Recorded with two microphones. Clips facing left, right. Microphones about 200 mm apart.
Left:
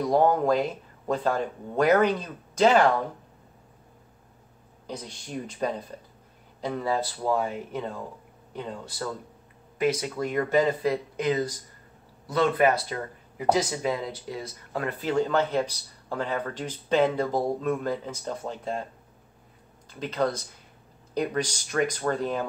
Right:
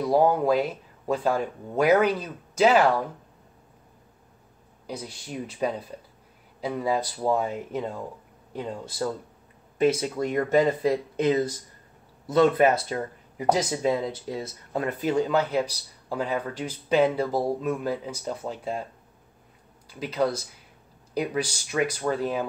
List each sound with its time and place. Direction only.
0.0 s speech: 10° right (ahead or behind)
4.8 s speech: 10° right (ahead or behind)
19.9 s speech: 10° right (ahead or behind)